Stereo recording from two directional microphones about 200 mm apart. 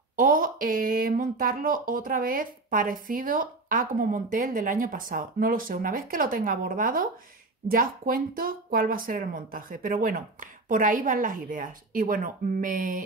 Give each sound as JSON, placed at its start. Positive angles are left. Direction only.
{"t": 0.1, "sound": "speech", "side_deg": -45}